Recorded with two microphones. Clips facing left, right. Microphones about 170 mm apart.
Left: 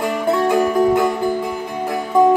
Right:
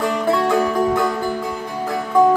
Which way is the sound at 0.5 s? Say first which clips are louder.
Left 3 dB; 15° left (ahead or behind).